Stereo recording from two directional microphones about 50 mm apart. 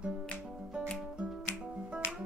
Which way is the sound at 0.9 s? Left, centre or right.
Centre.